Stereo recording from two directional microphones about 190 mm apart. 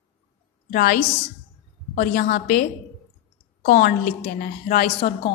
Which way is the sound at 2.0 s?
45° left (ahead or behind).